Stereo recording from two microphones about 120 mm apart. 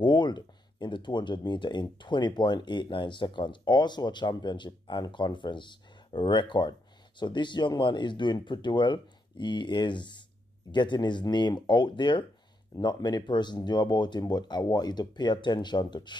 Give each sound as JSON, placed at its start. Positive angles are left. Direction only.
{"t": 0.0, "sound": "speech", "side_deg": 40}